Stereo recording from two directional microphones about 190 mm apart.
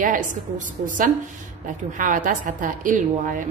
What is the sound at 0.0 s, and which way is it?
A woman's voice, 45° right (ahead or behind).